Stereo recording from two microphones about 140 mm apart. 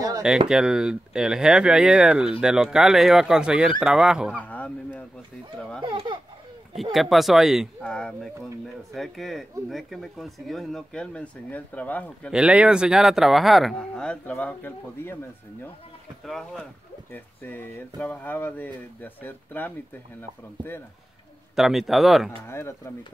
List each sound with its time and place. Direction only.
0.5 s speech: 5° right (ahead or behind)
4.4 s speech: 10° left (ahead or behind)
5.8 s a sound: 35° right (ahead or behind)
6.8 s speech: centre (ahead or behind)
12.3 s speech: 5° right (ahead or behind); by 15.1 s 15° left (ahead or behind)
16.3 s speech: centre (ahead or behind)
17.1 s speech: 15° left (ahead or behind)
21.5 s speech: centre (ahead or behind)
22.5 s speech: 20° left (ahead or behind)